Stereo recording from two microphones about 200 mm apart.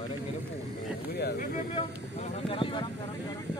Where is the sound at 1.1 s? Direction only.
50° left (ahead or behind).